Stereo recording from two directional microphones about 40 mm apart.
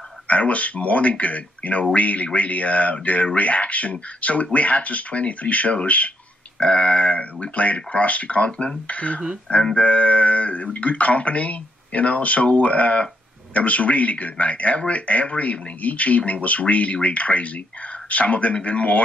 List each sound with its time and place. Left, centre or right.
0.3 s speech: left
6.6 s speech: left